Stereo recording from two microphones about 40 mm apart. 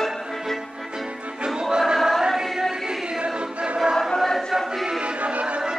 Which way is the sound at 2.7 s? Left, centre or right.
Centre.